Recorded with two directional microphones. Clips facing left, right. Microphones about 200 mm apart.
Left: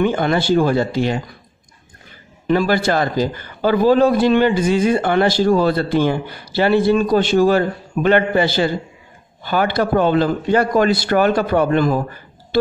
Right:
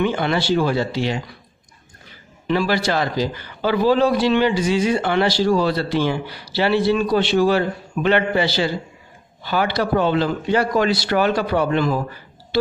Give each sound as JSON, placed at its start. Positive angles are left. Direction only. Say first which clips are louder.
{"t": 0.0, "sound": "a man's voice", "louder": "left 3 dB", "side_deg": 50}
{"t": 2.4, "sound": "a man's voice", "louder": "left 3 dB", "side_deg": 50}